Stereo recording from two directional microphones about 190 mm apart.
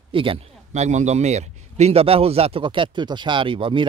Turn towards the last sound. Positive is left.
turn(degrees=-25)  # may be behind; listen again after turning